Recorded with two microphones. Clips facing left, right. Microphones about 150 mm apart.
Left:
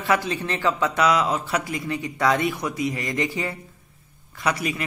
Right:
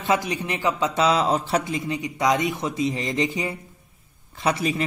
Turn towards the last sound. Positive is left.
turn(degrees=-25)  # may be behind; listen again after turning